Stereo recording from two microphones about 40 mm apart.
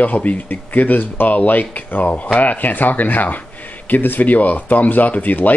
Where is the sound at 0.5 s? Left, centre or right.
Left.